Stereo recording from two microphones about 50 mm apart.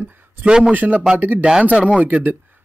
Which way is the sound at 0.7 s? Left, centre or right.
Right.